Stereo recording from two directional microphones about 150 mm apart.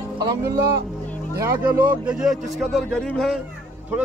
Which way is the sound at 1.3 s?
20° right (ahead or behind).